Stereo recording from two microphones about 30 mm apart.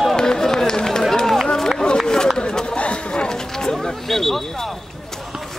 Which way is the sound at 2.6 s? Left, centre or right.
Left.